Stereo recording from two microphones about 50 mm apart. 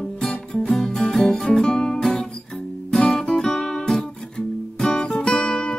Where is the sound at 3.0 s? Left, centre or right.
Centre.